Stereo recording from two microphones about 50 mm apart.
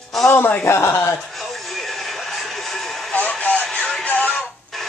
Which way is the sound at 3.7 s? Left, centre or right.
Centre.